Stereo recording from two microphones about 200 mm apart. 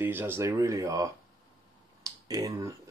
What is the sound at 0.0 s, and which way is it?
Speech, 10° right (ahead or behind).